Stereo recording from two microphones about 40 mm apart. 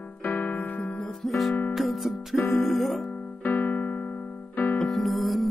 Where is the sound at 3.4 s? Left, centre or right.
Left.